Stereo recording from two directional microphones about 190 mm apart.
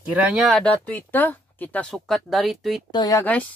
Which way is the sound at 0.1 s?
5° right (ahead or behind).